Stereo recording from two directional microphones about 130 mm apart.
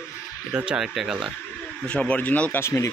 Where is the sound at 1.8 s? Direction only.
10° left (ahead or behind).